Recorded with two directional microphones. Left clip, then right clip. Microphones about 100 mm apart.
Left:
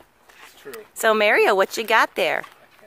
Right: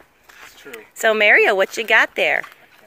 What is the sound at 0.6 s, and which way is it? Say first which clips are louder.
Speech: right 3 dB; 25° left (ahead or behind).